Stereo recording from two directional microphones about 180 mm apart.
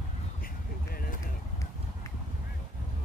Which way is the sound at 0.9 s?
55° left (ahead or behind).